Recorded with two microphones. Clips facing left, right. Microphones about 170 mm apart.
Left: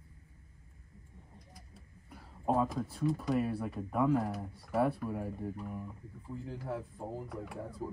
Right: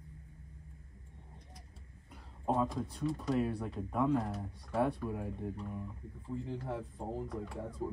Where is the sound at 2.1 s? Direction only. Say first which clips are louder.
Left 2 dB; 5° left (ahead or behind).